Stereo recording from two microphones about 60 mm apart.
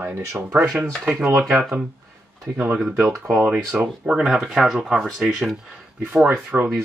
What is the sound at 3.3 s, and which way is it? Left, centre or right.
Speech, right.